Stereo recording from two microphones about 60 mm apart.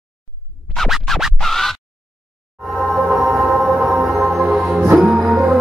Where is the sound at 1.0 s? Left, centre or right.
Centre.